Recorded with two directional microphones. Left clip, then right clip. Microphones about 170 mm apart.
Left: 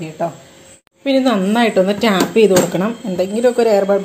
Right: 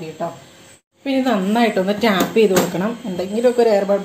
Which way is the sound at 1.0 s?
30° left (ahead or behind).